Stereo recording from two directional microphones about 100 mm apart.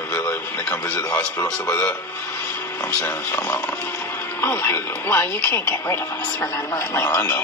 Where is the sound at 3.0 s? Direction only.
25° left (ahead or behind).